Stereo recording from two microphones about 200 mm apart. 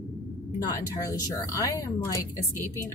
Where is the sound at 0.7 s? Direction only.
20° left (ahead or behind).